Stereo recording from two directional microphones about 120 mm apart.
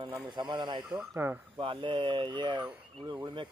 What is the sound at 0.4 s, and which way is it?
Speech, 40° right (ahead or behind).